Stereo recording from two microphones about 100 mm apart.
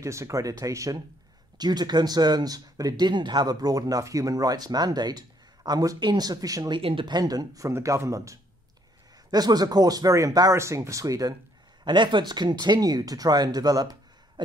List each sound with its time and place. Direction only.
0.0 s speech: 30° right (ahead or behind)
1.6 s speech: 45° right (ahead or behind)
6.7 s speech: 60° right (ahead or behind)
7.2 s speech: 40° right (ahead or behind)
11.8 s speech: 50° right (ahead or behind)